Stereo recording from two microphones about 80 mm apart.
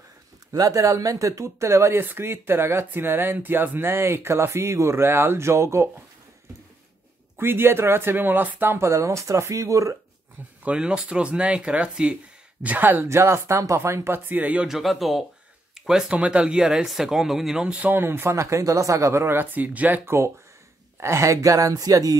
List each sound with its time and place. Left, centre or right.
0.5 s speech: right
7.3 s speech: right
10.6 s speech: centre; by 14.2 s right
14.3 s speech: centre
14.7 s speech: centre
21.0 s speech: right